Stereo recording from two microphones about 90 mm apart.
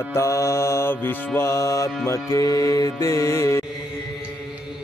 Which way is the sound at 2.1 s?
35° left (ahead or behind).